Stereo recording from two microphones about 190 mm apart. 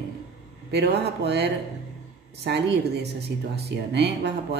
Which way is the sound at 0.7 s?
60° right (ahead or behind).